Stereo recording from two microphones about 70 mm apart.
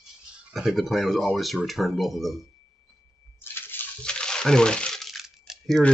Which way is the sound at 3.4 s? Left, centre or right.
Left.